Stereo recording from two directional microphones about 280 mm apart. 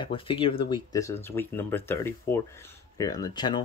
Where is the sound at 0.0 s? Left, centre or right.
Centre.